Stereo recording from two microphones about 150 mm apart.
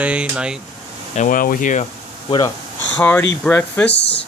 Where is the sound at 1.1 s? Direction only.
60° left (ahead or behind).